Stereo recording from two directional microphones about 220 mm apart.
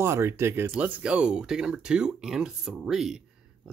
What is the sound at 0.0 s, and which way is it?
Speech, 10° right (ahead or behind).